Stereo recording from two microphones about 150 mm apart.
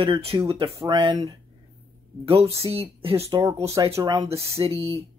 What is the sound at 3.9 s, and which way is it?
Speech, 25° right (ahead or behind).